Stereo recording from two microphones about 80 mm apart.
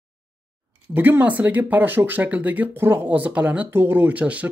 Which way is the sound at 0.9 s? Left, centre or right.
Right.